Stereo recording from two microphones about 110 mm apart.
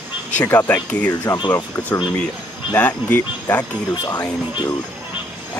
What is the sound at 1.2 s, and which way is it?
Speech, 35° left (ahead or behind).